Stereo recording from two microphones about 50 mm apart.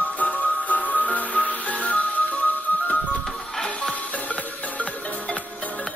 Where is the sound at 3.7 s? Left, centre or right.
Left.